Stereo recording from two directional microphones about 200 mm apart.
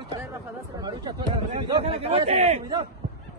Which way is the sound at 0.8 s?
25° right (ahead or behind).